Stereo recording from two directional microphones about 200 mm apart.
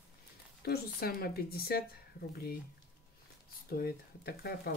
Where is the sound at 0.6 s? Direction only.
50° left (ahead or behind).